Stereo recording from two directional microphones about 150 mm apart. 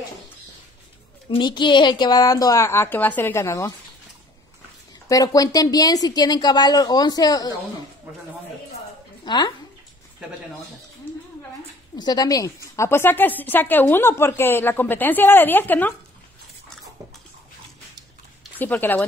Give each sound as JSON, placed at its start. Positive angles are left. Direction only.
{"t": 1.3, "sound": "a woman's voice", "side_deg": 30}
{"t": 5.0, "sound": "a woman's voice", "side_deg": 25}
{"t": 9.2, "sound": "speech", "side_deg": 30}
{"t": 12.0, "sound": "a woman's voice", "side_deg": 25}
{"t": 18.6, "sound": "a woman's voice", "side_deg": 10}